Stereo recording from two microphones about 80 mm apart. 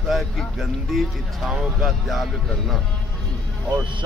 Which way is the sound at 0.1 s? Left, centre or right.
Centre.